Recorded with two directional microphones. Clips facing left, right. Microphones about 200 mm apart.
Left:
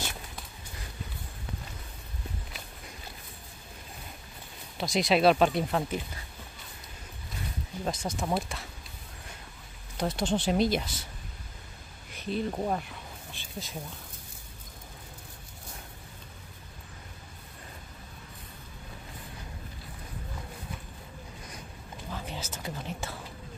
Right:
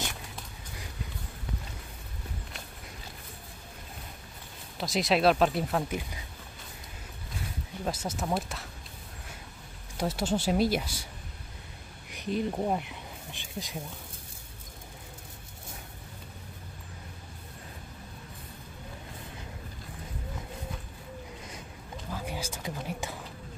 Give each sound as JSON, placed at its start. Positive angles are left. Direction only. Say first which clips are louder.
{"t": 4.7, "sound": "speech", "louder": "left 1 dB", "side_deg": 0}
{"t": 7.8, "sound": "speech", "louder": "even", "side_deg": -5}
{"t": 9.9, "sound": "speech", "louder": "even", "side_deg": -5}
{"t": 12.1, "sound": "speech", "louder": "right 1 dB", "side_deg": -15}
{"t": 22.1, "sound": "whispering", "louder": "right 2 dB", "side_deg": -10}